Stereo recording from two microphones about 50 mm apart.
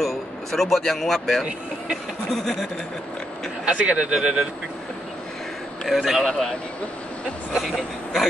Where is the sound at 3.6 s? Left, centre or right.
Right.